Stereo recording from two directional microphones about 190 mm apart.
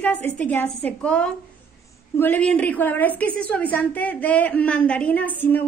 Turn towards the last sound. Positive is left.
turn(degrees=10)  # may be behind; listen again after turning